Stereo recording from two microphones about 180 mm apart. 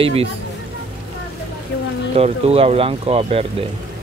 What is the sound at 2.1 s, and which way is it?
Speech, 35° right (ahead or behind).